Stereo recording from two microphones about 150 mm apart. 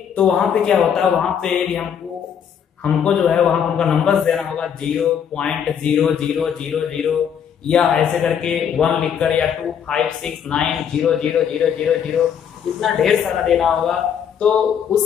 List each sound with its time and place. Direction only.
0.1 s a man's voice: 5° left (ahead or behind)